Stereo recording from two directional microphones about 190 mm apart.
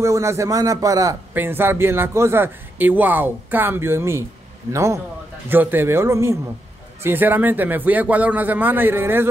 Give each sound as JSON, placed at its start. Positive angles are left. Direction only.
{"t": 0.0, "sound": "a man's voice", "side_deg": -15}